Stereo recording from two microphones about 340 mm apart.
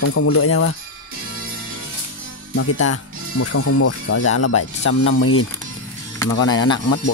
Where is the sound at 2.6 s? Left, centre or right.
Left.